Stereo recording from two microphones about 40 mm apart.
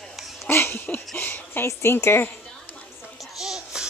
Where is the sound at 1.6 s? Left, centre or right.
Left.